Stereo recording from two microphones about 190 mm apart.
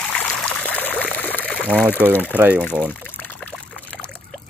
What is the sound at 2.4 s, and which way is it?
Speech, 10° right (ahead or behind).